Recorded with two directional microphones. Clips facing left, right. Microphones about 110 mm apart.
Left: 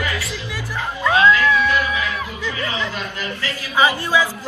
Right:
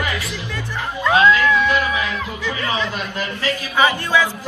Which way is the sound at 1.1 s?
20° right (ahead or behind).